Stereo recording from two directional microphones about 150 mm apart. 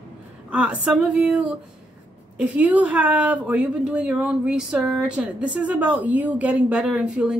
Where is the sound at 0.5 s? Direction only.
5° right (ahead or behind).